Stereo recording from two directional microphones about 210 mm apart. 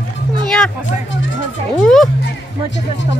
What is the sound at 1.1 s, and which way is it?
Music, 65° left (ahead or behind).